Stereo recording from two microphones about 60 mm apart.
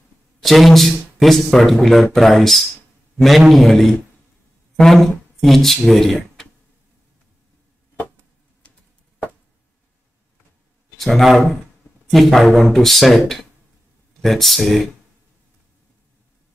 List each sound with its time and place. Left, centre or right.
0.4 s a man's voice: centre
8.6 s a sound: left
11.0 s speech: centre